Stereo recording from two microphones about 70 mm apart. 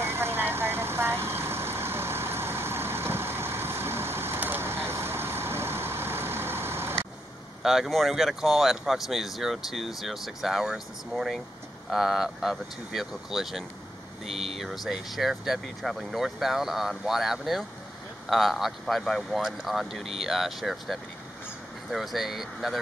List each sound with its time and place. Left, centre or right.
0.0 s vehicle: right
7.6 s speech: centre